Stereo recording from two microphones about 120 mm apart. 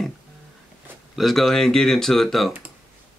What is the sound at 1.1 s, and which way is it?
Speech, centre (ahead or behind).